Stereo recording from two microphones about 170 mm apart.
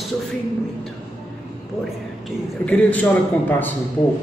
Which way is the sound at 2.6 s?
10° left (ahead or behind).